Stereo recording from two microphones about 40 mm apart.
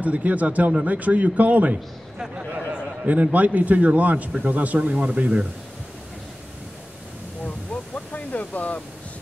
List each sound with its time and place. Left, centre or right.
0.0 s a man's voice: right
3.0 s a man's voice: right
4.7 s a man's voice: right
7.4 s a sound: left